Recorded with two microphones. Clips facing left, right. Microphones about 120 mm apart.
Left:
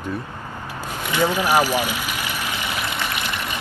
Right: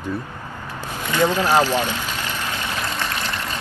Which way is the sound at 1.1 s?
15° left (ahead or behind).